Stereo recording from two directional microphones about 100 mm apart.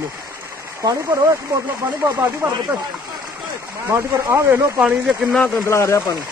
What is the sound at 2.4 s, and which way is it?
Speech, 20° right (ahead or behind).